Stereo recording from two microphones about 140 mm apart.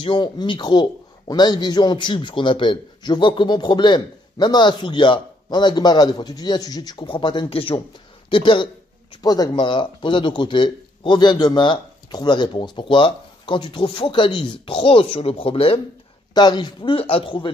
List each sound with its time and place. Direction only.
0.0 s a man's voice: 35° left (ahead or behind)
16.3 s a man's voice: 30° left (ahead or behind)